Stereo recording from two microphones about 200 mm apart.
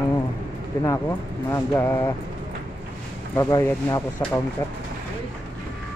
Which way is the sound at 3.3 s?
15° left (ahead or behind).